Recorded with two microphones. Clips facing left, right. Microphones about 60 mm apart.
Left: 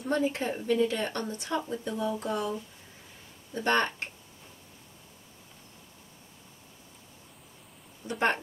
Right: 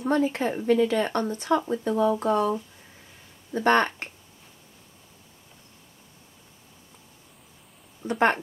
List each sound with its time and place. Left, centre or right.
0.1 s speech: right
0.7 s speech: right
8.1 s speech: right